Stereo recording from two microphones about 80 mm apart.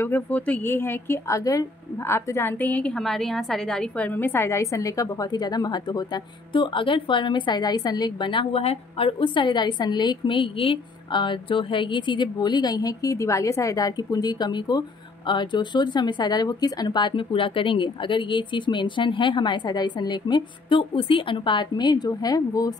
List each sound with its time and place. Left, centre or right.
0.0 s a woman's voice: left
1.4 s a woman's voice: left
2.0 s a woman's voice: left
2.6 s a woman's voice: centre
2.9 s a woman's voice: centre
4.1 s a woman's voice: left